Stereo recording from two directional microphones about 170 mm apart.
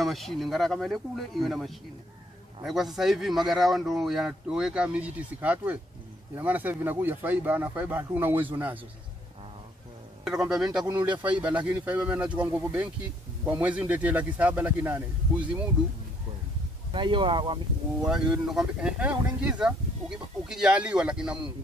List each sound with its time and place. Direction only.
0.0 s speech: centre (ahead or behind)
10.2 s speech: 5° right (ahead or behind)
16.9 s speech: 30° right (ahead or behind)
18.0 s speech: 5° right (ahead or behind)